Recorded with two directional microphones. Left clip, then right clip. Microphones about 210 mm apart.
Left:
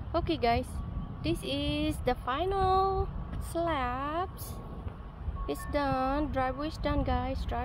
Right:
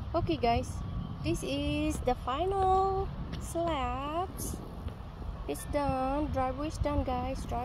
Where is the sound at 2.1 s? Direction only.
5° left (ahead or behind).